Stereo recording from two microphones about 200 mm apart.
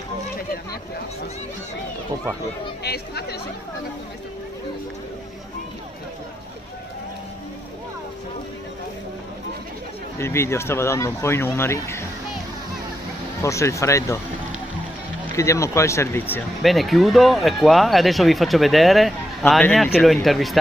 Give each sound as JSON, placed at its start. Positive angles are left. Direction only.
{"t": 2.8, "sound": "speech", "side_deg": 55}
{"t": 10.1, "sound": "speech", "side_deg": 15}
{"t": 13.4, "sound": "speech", "side_deg": 15}
{"t": 15.3, "sound": "speech", "side_deg": 15}
{"t": 16.6, "sound": "speech", "side_deg": 0}